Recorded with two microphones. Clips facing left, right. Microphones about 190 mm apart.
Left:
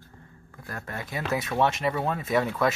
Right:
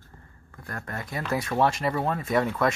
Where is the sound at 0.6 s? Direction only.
5° left (ahead or behind).